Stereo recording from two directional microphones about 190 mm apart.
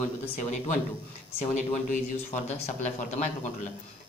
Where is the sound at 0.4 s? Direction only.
40° left (ahead or behind).